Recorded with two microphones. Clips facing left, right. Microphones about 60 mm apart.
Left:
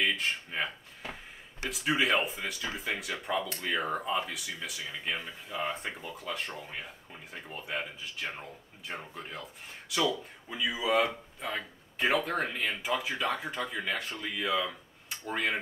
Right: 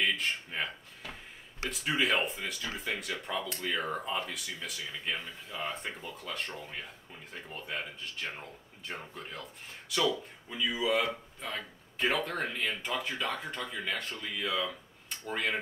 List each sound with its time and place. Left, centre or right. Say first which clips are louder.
0.0 s speech: left 1 dB; centre
1.7 s speech: left 2 dB; centre